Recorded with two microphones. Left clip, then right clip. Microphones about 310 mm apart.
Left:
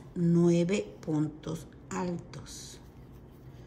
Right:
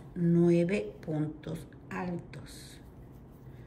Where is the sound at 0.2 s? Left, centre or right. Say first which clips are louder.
Even; centre.